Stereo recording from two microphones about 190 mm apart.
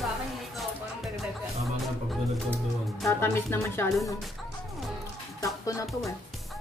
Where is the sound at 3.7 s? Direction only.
10° left (ahead or behind).